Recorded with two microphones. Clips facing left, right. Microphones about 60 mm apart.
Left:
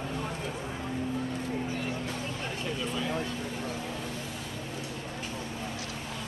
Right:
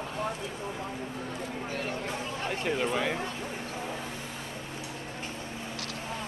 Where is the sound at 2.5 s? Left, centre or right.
Right.